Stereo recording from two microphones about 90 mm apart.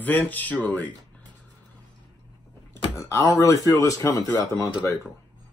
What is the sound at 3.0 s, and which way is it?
Speech, 40° left (ahead or behind).